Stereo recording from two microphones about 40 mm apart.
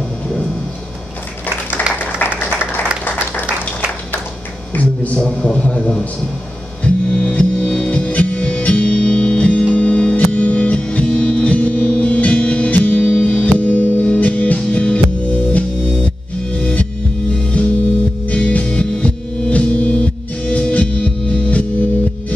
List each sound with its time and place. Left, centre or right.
2.0 s a sound: left
5.1 s a man's voice: left
6.8 s music: left